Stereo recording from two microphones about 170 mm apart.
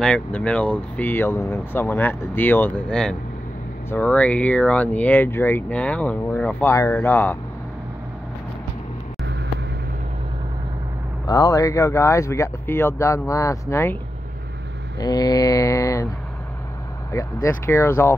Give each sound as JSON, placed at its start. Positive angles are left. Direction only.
{"t": 0.0, "sound": "speech", "side_deg": 5}
{"t": 11.2, "sound": "speech", "side_deg": 20}
{"t": 15.0, "sound": "mantra", "side_deg": 20}
{"t": 17.1, "sound": "speech", "side_deg": 20}